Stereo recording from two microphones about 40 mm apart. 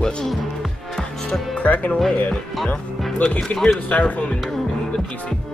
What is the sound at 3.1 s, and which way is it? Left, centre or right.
Speech, left.